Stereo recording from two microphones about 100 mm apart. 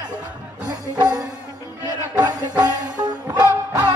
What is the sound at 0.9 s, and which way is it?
Music, 45° right (ahead or behind).